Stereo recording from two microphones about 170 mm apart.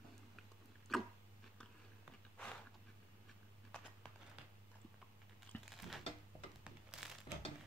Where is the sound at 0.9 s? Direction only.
Centre (ahead or behind).